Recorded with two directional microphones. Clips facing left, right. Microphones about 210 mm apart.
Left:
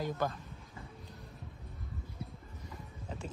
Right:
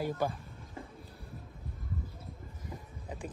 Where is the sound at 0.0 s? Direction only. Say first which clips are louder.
Right 2 dB; 10° right (ahead or behind).